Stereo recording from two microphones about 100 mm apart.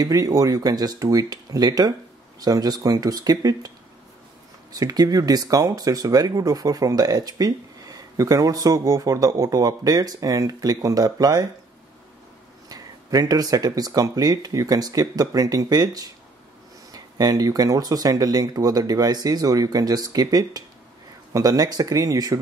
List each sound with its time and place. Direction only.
0.0 s speech: 35° right (ahead or behind)
4.7 s speech: 40° right (ahead or behind)
12.6 s speech: 40° right (ahead or behind)